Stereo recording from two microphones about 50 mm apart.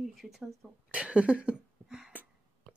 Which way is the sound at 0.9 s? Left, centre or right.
Right.